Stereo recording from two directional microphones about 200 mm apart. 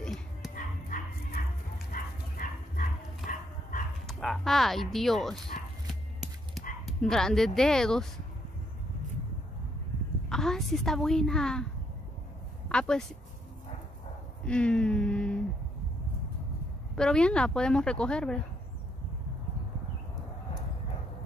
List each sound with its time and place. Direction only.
0.0 s dog: centre (ahead or behind)
0.6 s dog: 45° left (ahead or behind)
4.1 s speech: centre (ahead or behind)
5.5 s a sound: 40° left (ahead or behind)
6.9 s speech: centre (ahead or behind)
10.3 s speech: centre (ahead or behind)
12.6 s speech: 5° left (ahead or behind)
14.4 s speech: 5° left (ahead or behind)
16.9 s speech: 5° left (ahead or behind)